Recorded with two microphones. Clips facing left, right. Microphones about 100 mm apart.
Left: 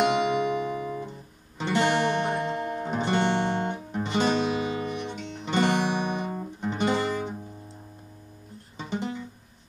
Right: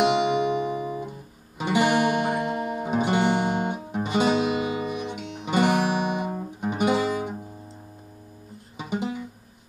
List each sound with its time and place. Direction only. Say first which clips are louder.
0.0 s music: right 2 dB; 15° right (ahead or behind)
8.7 s music: right 3 dB; 10° right (ahead or behind)